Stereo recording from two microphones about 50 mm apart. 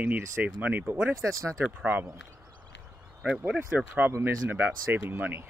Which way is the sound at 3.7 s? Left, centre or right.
Right.